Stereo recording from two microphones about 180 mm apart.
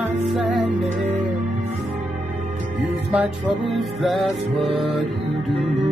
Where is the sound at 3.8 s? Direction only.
Centre (ahead or behind).